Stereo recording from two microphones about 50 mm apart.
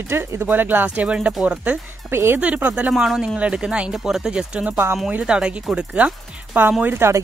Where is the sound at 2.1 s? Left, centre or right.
Right.